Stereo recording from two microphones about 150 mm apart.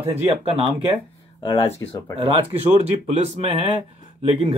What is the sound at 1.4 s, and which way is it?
Speech, 25° left (ahead or behind).